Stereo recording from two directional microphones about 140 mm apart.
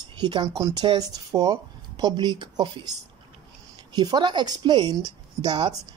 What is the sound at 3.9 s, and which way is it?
Speech, 30° right (ahead or behind).